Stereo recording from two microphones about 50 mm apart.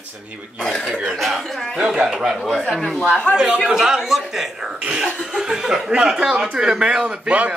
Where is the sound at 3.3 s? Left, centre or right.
Centre.